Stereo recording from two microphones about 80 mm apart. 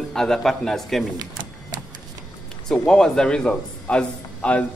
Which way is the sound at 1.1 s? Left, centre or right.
Right.